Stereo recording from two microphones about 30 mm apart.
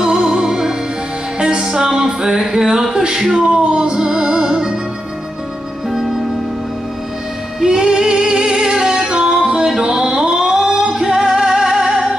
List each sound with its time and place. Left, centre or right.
0.0 s music: right
7.6 s music: right